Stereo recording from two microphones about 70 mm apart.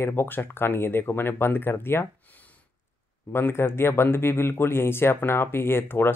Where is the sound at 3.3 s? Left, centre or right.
Left.